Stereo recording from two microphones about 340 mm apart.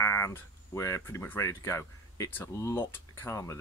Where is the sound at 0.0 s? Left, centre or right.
Centre.